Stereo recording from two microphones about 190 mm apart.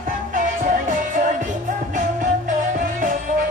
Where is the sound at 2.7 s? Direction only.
45° right (ahead or behind).